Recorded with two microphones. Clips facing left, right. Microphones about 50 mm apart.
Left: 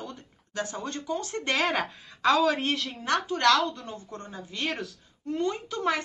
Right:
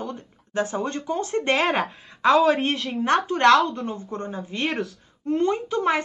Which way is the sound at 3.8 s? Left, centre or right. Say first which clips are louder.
Right 9 dB; right.